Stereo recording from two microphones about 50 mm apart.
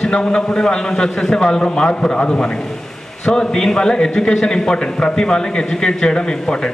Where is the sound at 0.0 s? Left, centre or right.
Centre.